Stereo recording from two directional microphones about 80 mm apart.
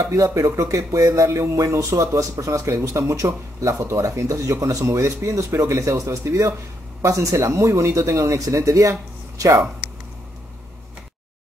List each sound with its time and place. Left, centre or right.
0.1 s speech: right